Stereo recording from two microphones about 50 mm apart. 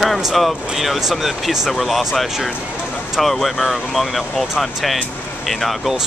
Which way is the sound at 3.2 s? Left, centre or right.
Centre.